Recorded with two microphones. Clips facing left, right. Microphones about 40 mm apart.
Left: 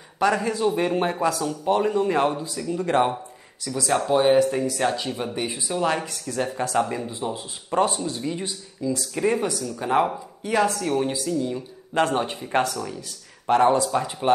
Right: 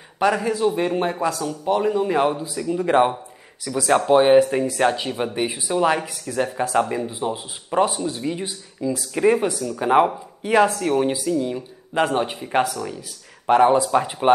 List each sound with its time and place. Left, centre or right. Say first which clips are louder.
0.2 s speech: right 2 dB; centre; by 14.3 s right